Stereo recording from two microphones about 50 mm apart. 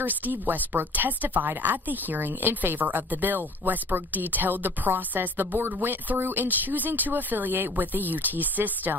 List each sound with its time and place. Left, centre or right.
0.0 s a woman's voice: right